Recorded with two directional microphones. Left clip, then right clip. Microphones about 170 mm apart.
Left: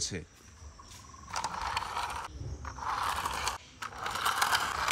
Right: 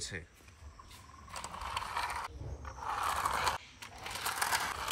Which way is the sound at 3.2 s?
20° right (ahead or behind).